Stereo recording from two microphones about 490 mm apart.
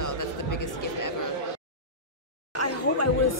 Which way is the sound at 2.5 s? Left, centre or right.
Left.